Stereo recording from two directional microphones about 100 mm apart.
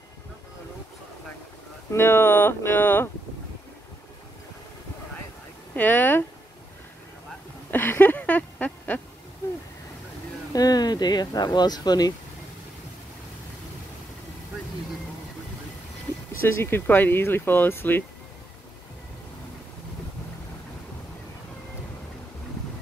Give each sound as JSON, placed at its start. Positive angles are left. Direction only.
{"t": 1.9, "sound": "speech", "side_deg": 25}
{"t": 5.8, "sound": "speech", "side_deg": 20}
{"t": 7.7, "sound": "a sound", "side_deg": 20}
{"t": 10.5, "sound": "speech", "side_deg": 40}
{"t": 16.4, "sound": "speech", "side_deg": 25}